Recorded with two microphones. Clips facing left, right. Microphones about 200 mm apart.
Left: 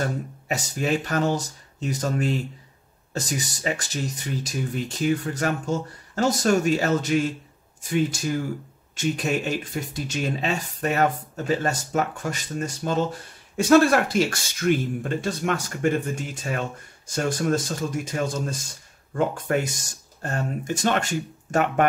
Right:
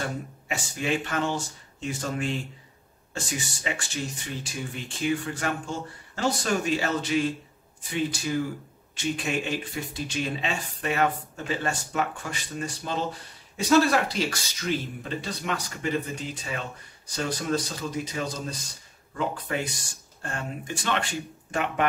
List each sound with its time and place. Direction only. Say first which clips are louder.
0.5 s speech: left 4 dB; 40° left (ahead or behind)